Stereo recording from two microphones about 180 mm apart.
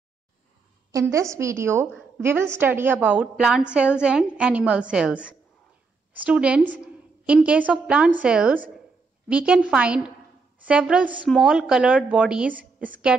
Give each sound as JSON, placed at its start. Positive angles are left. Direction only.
{"t": 1.1, "sound": "a woman's voice", "side_deg": -15}